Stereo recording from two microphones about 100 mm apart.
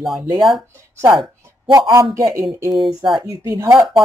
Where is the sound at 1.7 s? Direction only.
35° right (ahead or behind).